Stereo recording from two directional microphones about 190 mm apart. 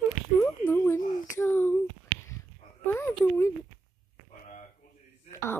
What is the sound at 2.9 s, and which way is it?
Speech, 10° left (ahead or behind).